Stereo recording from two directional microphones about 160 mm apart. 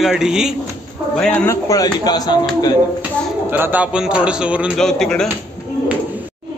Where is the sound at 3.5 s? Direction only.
10° right (ahead or behind).